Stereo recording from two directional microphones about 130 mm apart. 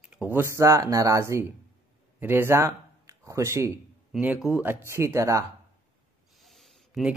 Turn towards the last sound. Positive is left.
turn(degrees=-5)  # may be behind; listen again after turning